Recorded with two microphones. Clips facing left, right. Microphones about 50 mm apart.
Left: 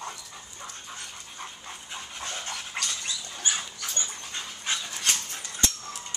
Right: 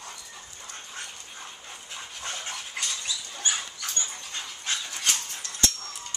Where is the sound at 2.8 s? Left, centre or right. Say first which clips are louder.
Left 1 dB; left.